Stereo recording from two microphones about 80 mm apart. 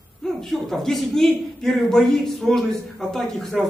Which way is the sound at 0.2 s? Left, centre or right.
Centre.